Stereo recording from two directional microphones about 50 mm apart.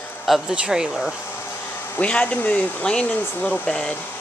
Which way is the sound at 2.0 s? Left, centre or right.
Left.